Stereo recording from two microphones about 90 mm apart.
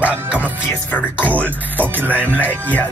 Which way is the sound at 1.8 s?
20° right (ahead or behind).